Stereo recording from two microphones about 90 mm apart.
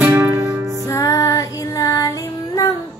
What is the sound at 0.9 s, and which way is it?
Child singing, 40° left (ahead or behind).